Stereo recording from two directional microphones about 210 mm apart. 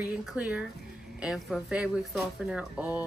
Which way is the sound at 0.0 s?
5° right (ahead or behind).